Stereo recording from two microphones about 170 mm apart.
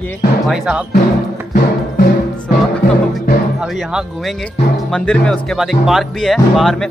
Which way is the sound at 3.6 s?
Centre (ahead or behind).